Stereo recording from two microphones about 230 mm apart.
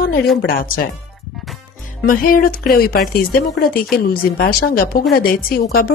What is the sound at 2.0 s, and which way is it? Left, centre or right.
Speech, left.